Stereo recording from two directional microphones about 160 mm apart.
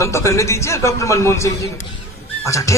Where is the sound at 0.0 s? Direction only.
20° left (ahead or behind).